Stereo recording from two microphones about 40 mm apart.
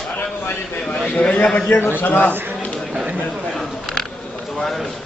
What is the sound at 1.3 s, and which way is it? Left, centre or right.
Speech, left.